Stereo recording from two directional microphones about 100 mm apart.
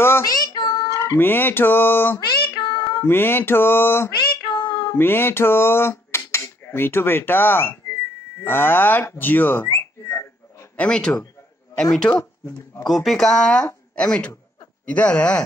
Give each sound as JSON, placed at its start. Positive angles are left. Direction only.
{"t": 0.2, "sound": "a sound", "side_deg": 40}
{"t": 1.1, "sound": "speech", "side_deg": 20}
{"t": 2.5, "sound": "child singing", "side_deg": 55}
{"t": 3.1, "sound": "speech", "side_deg": 20}
{"t": 4.1, "sound": "female singing", "side_deg": 50}
{"t": 4.9, "sound": "speech", "side_deg": 25}
{"t": 10.8, "sound": "speech", "side_deg": 10}
{"t": 12.2, "sound": "speech", "side_deg": 25}
{"t": 12.8, "sound": "speech", "side_deg": 5}